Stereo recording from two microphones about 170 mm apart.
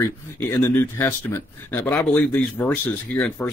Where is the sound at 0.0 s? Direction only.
15° left (ahead or behind).